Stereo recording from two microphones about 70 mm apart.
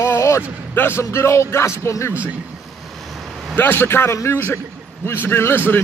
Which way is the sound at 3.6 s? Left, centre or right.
Left.